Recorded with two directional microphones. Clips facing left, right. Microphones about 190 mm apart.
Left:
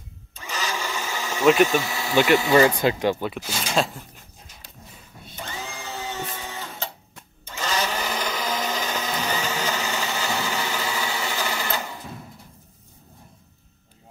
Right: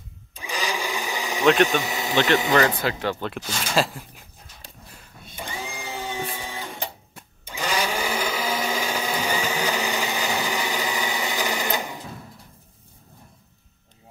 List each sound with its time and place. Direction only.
0.3 s sheep: 15° right (ahead or behind)
1.8 s a sound: 20° right (ahead or behind)
2.5 s speech: 15° left (ahead or behind)
3.3 s speech: 5° left (ahead or behind)
5.3 s printer: 15° right (ahead or behind)